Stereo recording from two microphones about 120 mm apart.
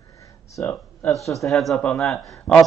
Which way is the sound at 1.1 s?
Centre (ahead or behind).